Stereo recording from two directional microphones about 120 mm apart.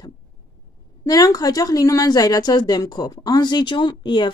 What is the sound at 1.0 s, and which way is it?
A woman's voice, 30° left (ahead or behind).